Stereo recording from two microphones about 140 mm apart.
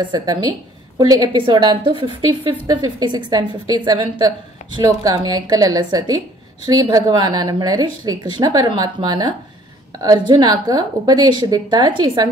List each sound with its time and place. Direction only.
0.0 s a woman's voice: 30° right (ahead or behind)
2.6 s a woman's voice: 30° right (ahead or behind)